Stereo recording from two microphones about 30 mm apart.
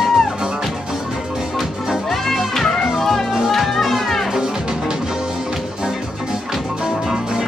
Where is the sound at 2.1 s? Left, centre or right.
Centre.